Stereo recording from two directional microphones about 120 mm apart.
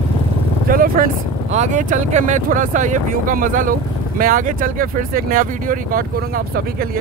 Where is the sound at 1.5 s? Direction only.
80° right.